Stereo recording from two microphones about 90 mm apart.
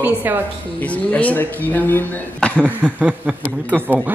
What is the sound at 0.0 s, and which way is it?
Speech, 25° right (ahead or behind).